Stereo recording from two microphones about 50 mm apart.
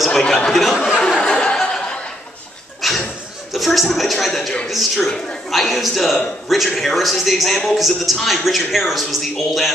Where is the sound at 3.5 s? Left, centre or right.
Centre.